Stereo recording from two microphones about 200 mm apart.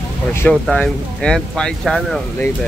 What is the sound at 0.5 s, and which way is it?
Speech, 5° left (ahead or behind).